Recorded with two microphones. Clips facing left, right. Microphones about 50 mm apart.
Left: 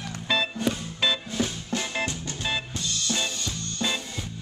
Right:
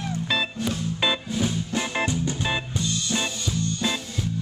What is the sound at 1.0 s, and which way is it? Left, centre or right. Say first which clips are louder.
Music: right 1 dB; centre.